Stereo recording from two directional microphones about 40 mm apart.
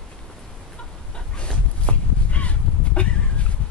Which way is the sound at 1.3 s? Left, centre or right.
Left.